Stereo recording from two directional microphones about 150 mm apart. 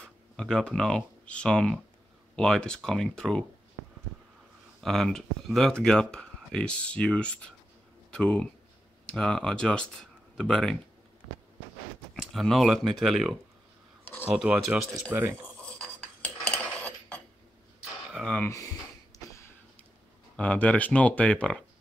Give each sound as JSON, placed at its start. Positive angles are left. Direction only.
{"t": 0.0, "sound": "speech", "side_deg": 5}
{"t": 4.8, "sound": "speech", "side_deg": 0}
{"t": 12.2, "sound": "speech", "side_deg": 0}
{"t": 15.6, "sound": "cutlery", "side_deg": 10}
{"t": 18.1, "sound": "speech", "side_deg": 5}
{"t": 19.1, "sound": "a sound", "side_deg": 25}
{"t": 20.3, "sound": "speech", "side_deg": 10}